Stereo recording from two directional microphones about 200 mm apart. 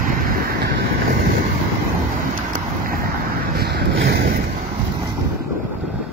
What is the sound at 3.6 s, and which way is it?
Boat, 55° right (ahead or behind).